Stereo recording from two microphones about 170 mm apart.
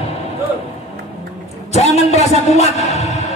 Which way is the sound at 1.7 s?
40° left (ahead or behind).